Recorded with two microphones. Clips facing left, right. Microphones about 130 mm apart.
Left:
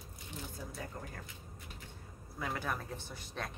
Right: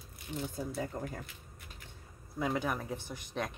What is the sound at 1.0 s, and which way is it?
Speech, 30° right (ahead or behind).